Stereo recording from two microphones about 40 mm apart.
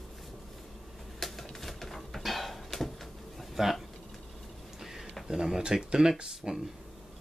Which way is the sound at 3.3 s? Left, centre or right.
Centre.